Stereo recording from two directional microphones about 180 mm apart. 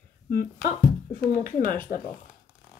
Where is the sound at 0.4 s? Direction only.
50° left (ahead or behind).